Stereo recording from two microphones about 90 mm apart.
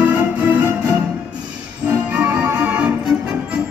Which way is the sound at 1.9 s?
15° right (ahead or behind).